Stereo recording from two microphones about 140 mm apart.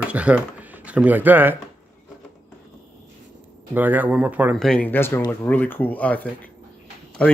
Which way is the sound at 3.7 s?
15° right (ahead or behind).